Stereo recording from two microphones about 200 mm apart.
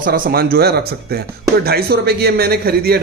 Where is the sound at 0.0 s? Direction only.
50° right (ahead or behind).